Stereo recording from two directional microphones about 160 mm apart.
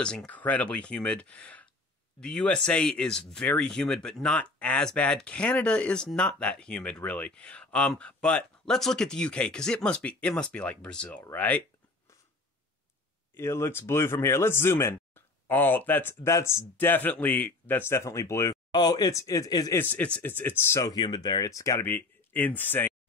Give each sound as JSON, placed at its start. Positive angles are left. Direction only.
{"t": 0.0, "sound": "speech", "side_deg": 5}
{"t": 13.3, "sound": "speech", "side_deg": 15}
{"t": 19.8, "sound": "speech", "side_deg": 10}